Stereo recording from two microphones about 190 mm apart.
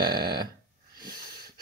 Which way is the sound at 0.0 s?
20° right (ahead or behind).